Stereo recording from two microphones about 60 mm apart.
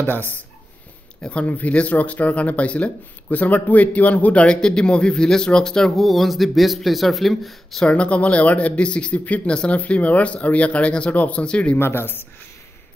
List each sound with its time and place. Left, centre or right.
0.0 s speech: left; by 7.8 s centre
7.8 s speech: centre
11.8 s speech: left